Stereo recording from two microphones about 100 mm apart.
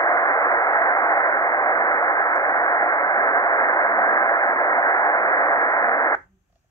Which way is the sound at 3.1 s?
40° left (ahead or behind).